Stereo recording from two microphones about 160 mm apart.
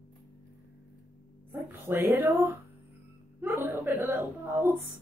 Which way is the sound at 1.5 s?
15° right (ahead or behind).